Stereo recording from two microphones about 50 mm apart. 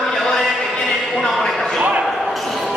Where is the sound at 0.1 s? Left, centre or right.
Centre.